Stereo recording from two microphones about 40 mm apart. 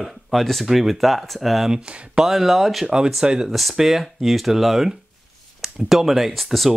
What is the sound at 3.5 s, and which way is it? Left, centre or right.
Speech, centre.